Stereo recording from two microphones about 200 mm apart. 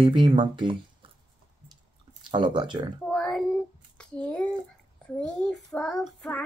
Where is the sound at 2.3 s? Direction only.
25° right (ahead or behind).